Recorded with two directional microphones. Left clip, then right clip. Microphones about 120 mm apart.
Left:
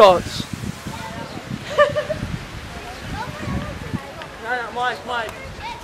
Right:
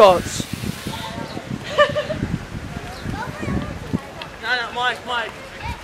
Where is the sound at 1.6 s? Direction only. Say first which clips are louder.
Even; centre (ahead or behind).